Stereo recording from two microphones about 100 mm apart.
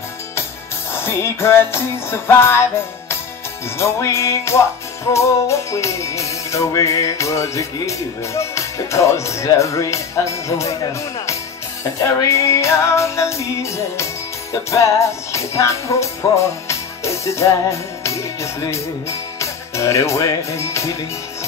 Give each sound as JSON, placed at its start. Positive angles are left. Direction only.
{"t": 0.9, "sound": "music", "side_deg": 25}